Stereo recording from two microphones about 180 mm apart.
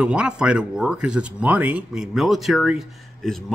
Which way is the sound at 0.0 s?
5° right (ahead or behind).